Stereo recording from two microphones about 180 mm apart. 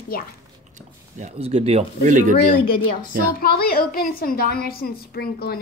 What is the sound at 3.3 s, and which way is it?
A child's voice, 60° left (ahead or behind).